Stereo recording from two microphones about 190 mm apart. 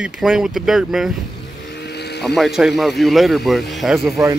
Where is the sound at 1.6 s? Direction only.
60° left (ahead or behind).